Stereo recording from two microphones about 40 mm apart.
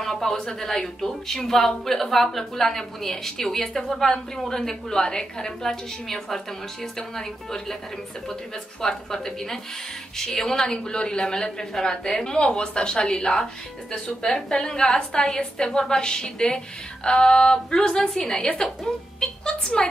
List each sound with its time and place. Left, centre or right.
0.0 s a woman's voice: centre
8.8 s a woman's voice: centre